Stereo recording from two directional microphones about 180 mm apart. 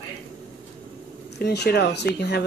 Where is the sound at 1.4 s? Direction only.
65° left (ahead or behind).